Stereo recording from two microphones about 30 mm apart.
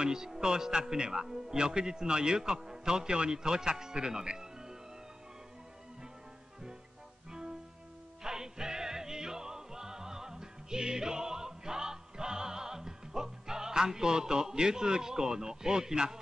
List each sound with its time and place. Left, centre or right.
0.0 s a man's voice: right
4.4 s music: centre
8.2 s music: right